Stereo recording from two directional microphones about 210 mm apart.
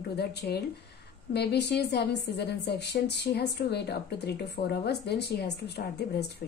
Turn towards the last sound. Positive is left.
turn(degrees=50)  # may be behind; listen again after turning